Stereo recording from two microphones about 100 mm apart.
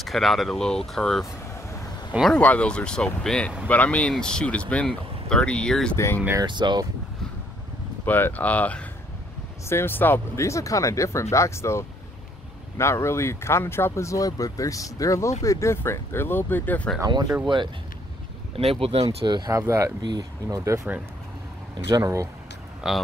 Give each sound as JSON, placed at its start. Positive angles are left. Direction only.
{"t": 0.0, "sound": "speech", "side_deg": 0}
{"t": 2.3, "sound": "speech", "side_deg": 15}
{"t": 5.9, "sound": "speech", "side_deg": 25}
{"t": 6.4, "sound": "speech", "side_deg": -50}
{"t": 8.0, "sound": "speech", "side_deg": 20}
{"t": 18.6, "sound": "speech", "side_deg": -75}
{"t": 19.2, "sound": "speech", "side_deg": -50}
{"t": 19.5, "sound": "speech", "side_deg": -30}
{"t": 20.0, "sound": "speech", "side_deg": -45}
{"t": 20.4, "sound": "speech", "side_deg": -30}
{"t": 21.7, "sound": "speech", "side_deg": -45}
{"t": 22.0, "sound": "speech", "side_deg": -30}
{"t": 22.8, "sound": "speech", "side_deg": -5}